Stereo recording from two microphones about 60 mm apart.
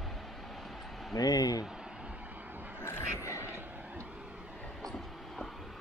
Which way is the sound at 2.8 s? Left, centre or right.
Left.